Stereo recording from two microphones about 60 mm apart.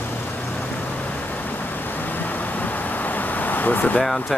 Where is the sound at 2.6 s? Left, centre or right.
Left.